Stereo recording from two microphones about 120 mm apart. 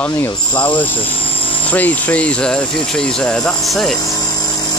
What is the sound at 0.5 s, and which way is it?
Speech, 40° left (ahead or behind).